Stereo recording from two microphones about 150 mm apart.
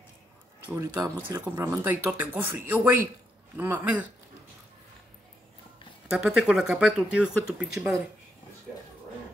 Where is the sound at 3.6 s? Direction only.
10° right (ahead or behind).